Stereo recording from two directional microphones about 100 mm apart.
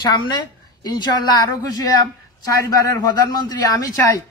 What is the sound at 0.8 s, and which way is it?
Speech, 45° left (ahead or behind).